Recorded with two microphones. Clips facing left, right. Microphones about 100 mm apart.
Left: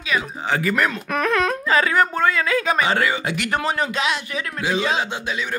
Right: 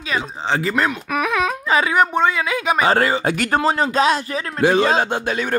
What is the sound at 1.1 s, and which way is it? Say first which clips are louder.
Speech: left 1 dB; 10° right (ahead or behind).